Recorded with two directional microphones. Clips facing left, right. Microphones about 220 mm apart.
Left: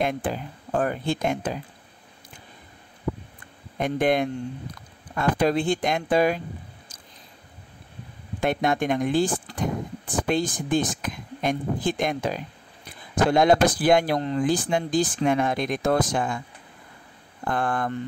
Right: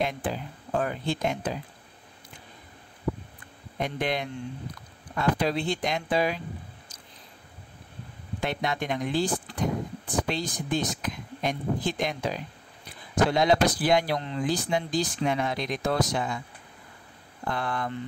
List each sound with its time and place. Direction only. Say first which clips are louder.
0.0 s speech: left 3 dB; 50° left (ahead or behind)
3.8 s speech: left 7 dB; 50° left (ahead or behind)
8.4 s speech: left 6 dB; 50° left (ahead or behind)
17.5 s speech: left 5 dB; 50° left (ahead or behind)